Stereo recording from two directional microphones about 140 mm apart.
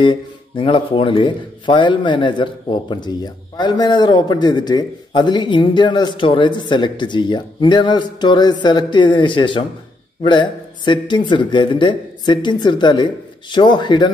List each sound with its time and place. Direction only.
0.0 s speech: 35° left (ahead or behind)